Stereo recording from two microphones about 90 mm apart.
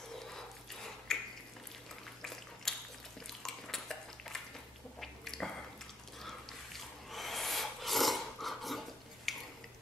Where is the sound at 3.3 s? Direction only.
5° left (ahead or behind).